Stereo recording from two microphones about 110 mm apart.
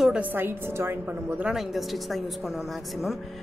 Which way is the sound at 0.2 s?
20° right (ahead or behind).